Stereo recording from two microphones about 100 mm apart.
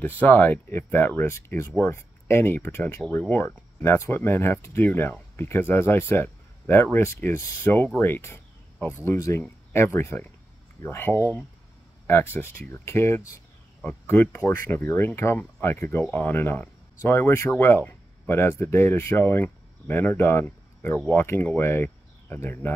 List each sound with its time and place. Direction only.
0.0 s speech: 20° left (ahead or behind)